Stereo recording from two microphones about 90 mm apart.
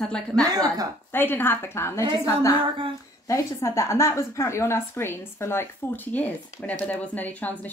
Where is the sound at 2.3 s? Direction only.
35° left (ahead or behind).